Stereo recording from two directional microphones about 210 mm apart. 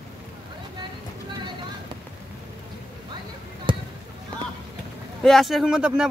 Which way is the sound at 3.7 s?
25° right (ahead or behind).